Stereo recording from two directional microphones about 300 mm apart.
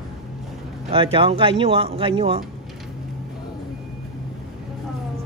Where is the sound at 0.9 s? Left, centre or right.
Centre.